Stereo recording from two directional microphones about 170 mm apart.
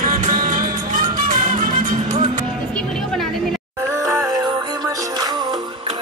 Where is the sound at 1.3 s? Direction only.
55° right (ahead or behind).